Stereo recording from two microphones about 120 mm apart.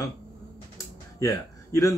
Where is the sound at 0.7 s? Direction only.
30° left (ahead or behind).